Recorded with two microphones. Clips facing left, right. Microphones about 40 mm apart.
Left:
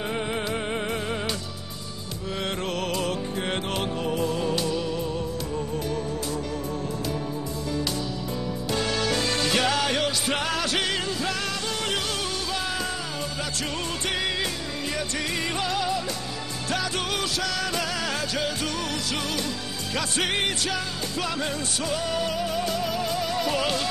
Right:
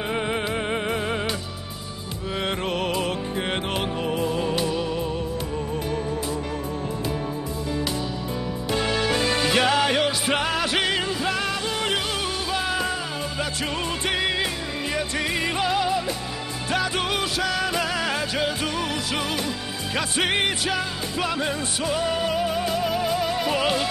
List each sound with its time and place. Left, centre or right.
0.1 s music: centre
2.7 s music: centre
8.7 s music: centre
14.0 s music: centre
20.0 s music: centre